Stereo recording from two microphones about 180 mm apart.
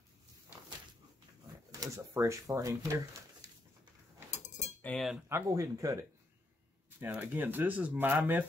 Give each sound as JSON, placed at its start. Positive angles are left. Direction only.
{"t": 1.7, "sound": "speech", "side_deg": -20}
{"t": 4.8, "sound": "cutlery", "side_deg": 0}
{"t": 5.3, "sound": "speech", "side_deg": -15}
{"t": 7.0, "sound": "speech", "side_deg": -10}